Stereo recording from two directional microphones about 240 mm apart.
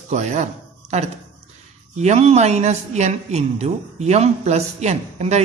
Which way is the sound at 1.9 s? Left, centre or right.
Right.